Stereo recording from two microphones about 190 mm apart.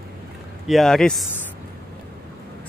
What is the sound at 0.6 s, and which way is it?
Speech, centre (ahead or behind).